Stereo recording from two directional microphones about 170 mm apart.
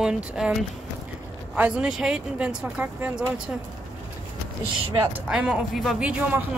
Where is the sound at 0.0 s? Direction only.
5° right (ahead or behind).